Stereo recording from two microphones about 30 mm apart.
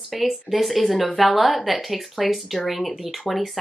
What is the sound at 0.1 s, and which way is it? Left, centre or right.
Speech, centre.